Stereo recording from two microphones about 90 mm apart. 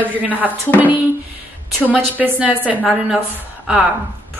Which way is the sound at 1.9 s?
20° right (ahead or behind).